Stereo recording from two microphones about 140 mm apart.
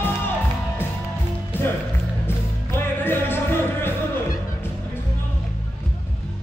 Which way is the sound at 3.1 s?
15° left (ahead or behind).